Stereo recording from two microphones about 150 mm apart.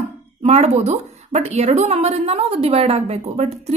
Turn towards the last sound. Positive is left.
turn(degrees=-45)  # may be behind; listen again after turning